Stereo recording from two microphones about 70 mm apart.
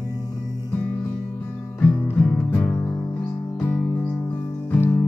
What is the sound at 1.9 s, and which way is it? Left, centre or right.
Music, left.